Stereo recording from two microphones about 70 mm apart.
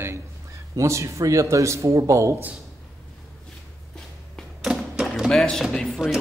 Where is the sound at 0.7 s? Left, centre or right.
Right.